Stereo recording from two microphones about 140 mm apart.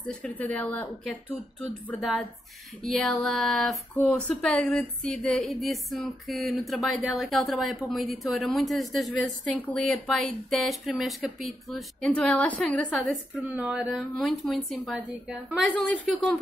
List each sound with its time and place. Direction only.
0.2 s speech: 10° left (ahead or behind)
2.0 s speech: centre (ahead or behind)